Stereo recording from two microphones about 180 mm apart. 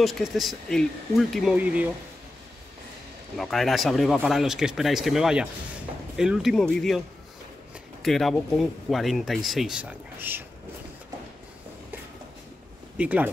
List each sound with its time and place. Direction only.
0.0 s speech: centre (ahead or behind)
3.3 s speech: centre (ahead or behind)
8.0 s speech: centre (ahead or behind)
12.9 s speech: 10° right (ahead or behind)